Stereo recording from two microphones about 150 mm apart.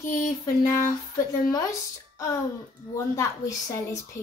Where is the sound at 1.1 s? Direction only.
20° left (ahead or behind).